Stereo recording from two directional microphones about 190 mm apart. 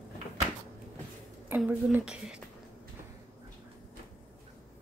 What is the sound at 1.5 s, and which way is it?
Speech, 10° right (ahead or behind).